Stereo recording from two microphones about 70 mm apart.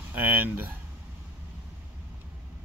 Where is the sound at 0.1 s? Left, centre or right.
Right.